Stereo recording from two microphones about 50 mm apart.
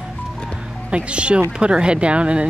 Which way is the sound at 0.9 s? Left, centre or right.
Right.